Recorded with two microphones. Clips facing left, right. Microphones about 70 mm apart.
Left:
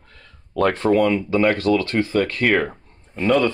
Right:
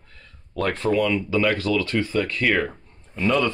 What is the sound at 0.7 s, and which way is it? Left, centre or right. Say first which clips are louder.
Speech: left 3 dB; left.